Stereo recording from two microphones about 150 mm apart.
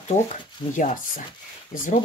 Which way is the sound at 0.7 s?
60° left (ahead or behind).